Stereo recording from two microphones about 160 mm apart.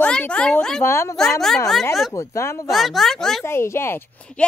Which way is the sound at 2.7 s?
Centre (ahead or behind).